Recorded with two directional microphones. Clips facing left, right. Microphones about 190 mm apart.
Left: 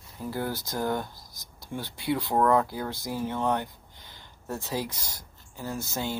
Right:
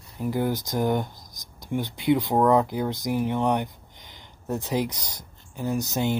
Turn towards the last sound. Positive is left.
turn(degrees=-20)  # may be behind; listen again after turning